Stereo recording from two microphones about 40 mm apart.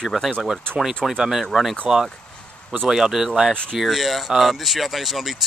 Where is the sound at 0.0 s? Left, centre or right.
Centre.